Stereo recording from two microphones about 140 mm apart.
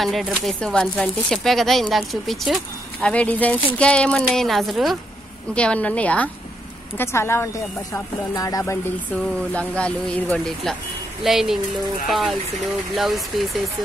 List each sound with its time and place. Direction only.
0.0 s speech: centre (ahead or behind); by 8.7 s 25° left (ahead or behind)
9.1 s speech: 10° left (ahead or behind)